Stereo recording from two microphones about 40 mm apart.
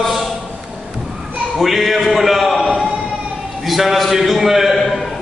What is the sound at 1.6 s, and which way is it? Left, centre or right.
Speech, centre.